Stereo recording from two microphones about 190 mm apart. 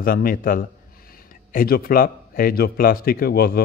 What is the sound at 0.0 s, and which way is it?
Speech, 50° left (ahead or behind).